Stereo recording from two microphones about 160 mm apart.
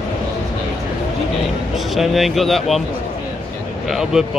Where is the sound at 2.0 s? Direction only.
Centre (ahead or behind).